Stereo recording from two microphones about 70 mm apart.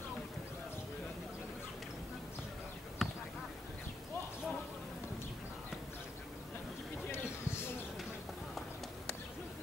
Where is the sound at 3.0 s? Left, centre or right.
Centre.